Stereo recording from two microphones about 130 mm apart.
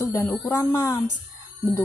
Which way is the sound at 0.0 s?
15° left (ahead or behind).